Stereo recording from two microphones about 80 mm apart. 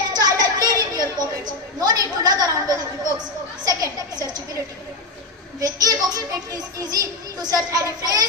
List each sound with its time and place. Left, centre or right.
0.1 s children playing: right
1.4 s a sound: right
3.6 s a woman's voice: right
5.6 s speech: right